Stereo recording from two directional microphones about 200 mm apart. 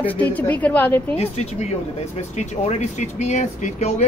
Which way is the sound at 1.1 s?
30° left (ahead or behind).